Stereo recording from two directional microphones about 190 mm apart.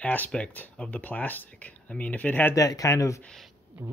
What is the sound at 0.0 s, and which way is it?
Speech, 10° left (ahead or behind).